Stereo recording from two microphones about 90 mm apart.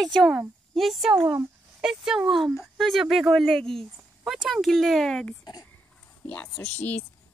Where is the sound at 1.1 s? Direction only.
25° right (ahead or behind).